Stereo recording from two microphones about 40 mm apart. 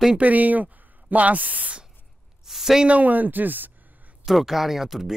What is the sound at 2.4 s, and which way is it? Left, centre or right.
Speech, centre.